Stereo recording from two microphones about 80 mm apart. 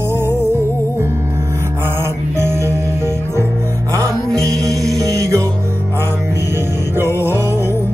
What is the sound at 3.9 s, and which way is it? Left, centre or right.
Music, right.